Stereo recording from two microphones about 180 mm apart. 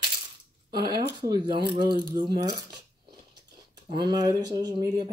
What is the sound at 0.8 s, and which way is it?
Speech, 25° right (ahead or behind).